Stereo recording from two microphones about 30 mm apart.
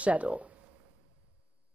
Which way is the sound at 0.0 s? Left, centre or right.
Right.